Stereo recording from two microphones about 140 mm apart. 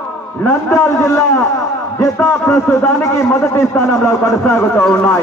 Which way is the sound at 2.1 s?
10° left (ahead or behind).